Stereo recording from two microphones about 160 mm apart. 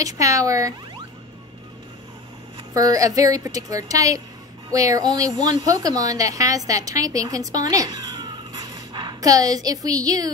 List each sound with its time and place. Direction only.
0.0 s a woman's voice: 20° right (ahead or behind)
2.7 s a woman's voice: 20° right (ahead or behind)